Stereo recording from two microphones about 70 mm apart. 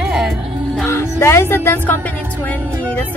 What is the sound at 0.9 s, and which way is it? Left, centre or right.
Speech, left.